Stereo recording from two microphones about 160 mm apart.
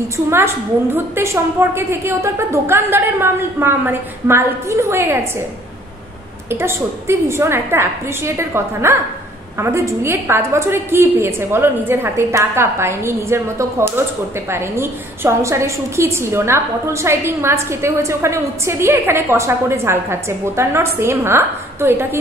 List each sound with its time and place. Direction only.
0.3 s a woman's voice: 15° right (ahead or behind)
6.5 s a woman's voice: 15° right (ahead or behind)